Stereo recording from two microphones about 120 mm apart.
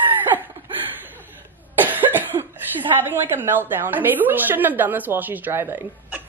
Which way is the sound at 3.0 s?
20° right (ahead or behind).